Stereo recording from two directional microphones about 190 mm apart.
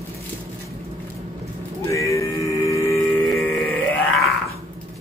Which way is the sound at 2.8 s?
15° left (ahead or behind).